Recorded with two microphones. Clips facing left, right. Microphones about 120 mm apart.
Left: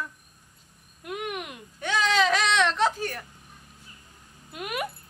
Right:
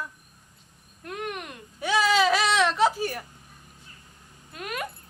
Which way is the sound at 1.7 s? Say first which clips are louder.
Right 2 dB; 5° right (ahead or behind).